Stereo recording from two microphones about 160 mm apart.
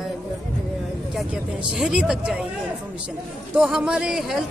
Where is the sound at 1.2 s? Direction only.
Centre (ahead or behind).